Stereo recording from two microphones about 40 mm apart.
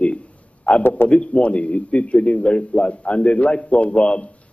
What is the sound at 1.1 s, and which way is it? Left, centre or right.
A man's voice, left.